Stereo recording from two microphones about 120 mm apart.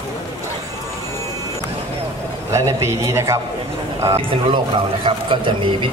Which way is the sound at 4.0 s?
25° right (ahead or behind).